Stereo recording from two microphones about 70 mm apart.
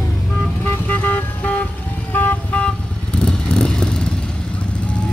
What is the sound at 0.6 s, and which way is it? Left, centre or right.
Vehicle, left.